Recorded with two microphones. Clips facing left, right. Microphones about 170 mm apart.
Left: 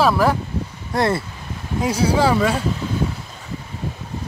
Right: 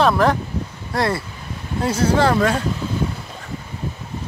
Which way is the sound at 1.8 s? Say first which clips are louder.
Right 1 dB; 10° left (ahead or behind).